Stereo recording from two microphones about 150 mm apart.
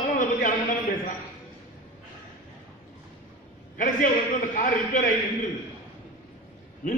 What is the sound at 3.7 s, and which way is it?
A man's voice, 65° left (ahead or behind).